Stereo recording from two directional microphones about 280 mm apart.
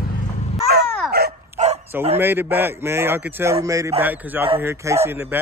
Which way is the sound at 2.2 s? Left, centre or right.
Centre.